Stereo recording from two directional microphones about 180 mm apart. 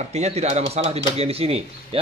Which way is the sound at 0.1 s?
35° right (ahead or behind).